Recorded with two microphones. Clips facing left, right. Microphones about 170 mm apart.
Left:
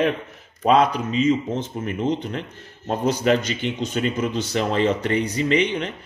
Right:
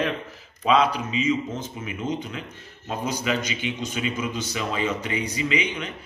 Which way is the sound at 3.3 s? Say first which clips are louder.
Left 8 dB; 45° left (ahead or behind).